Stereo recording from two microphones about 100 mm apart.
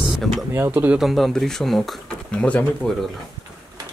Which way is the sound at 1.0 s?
Centre (ahead or behind).